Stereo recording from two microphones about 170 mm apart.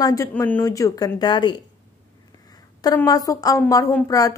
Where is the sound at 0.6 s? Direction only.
20° left (ahead or behind).